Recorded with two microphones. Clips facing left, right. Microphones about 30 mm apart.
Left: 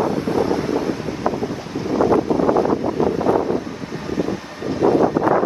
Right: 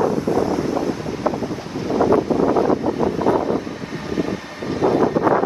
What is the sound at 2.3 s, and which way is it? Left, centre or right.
Wind noise, centre.